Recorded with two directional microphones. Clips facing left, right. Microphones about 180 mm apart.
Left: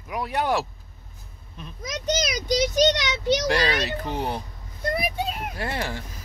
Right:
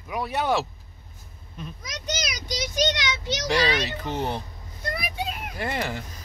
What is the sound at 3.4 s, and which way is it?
A child's voice, 5° left (ahead or behind).